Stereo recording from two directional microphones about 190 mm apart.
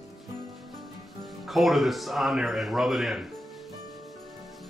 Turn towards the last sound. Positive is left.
turn(degrees=0)  # may be behind; listen again after turning